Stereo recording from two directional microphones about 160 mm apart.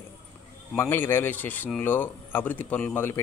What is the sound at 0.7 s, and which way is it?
Speech, 15° left (ahead or behind).